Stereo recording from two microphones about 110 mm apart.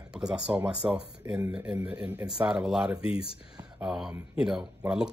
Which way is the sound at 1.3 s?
25° right (ahead or behind).